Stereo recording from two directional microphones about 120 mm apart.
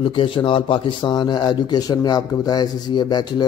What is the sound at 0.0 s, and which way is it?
Speech, 45° left (ahead or behind).